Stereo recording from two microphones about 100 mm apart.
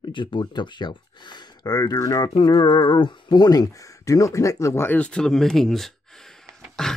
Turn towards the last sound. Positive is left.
turn(degrees=5)  # may be behind; listen again after turning